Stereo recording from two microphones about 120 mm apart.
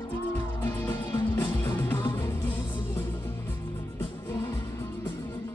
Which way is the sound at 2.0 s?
35° left (ahead or behind).